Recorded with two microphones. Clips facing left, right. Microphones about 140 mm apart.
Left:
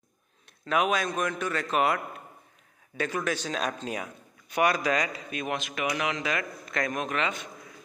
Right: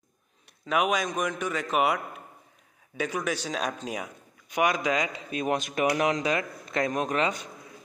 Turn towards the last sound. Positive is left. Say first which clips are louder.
# right 3 dB
turn(degrees=-35)  # may be behind; listen again after turning